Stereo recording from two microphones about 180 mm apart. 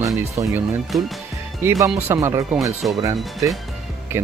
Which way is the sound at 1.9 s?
15° right (ahead or behind).